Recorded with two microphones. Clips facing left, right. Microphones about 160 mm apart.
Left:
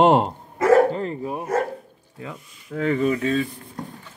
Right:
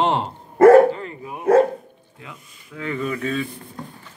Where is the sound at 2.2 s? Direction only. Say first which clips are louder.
Left 6 dB; 40° left (ahead or behind).